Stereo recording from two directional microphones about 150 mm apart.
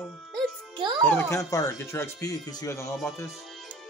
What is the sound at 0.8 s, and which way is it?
Speech, 30° right (ahead or behind).